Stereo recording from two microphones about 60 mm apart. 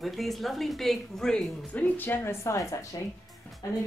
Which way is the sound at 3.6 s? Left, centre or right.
Left.